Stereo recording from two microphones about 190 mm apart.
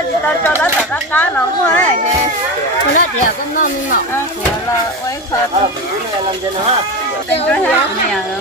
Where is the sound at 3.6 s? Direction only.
45° left (ahead or behind).